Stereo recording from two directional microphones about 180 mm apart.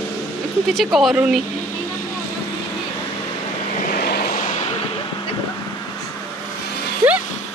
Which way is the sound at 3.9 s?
55° left (ahead or behind).